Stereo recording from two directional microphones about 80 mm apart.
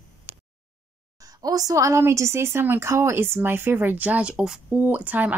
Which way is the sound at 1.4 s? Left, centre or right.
Right.